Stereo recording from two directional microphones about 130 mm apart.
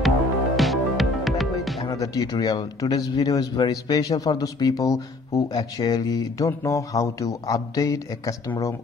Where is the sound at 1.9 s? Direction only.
25° left (ahead or behind).